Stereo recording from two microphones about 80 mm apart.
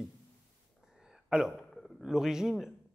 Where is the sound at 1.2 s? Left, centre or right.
Centre.